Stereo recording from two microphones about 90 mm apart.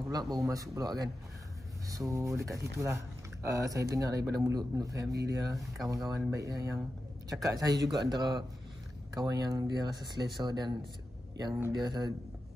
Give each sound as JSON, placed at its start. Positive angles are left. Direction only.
{"t": 0.1, "sound": "speech", "side_deg": -45}